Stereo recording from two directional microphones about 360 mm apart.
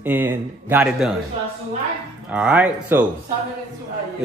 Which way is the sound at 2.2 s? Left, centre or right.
Centre.